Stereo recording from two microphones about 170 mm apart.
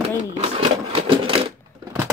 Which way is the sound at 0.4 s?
35° right (ahead or behind).